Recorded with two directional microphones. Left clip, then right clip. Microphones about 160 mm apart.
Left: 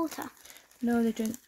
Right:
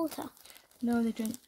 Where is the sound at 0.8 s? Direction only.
40° left (ahead or behind).